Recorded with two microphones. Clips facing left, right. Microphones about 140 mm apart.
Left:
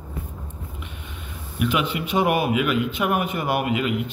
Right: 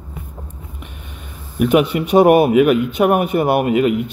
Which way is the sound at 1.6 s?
45° right (ahead or behind).